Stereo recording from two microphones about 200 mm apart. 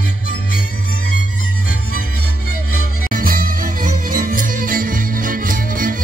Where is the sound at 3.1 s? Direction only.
45° right (ahead or behind).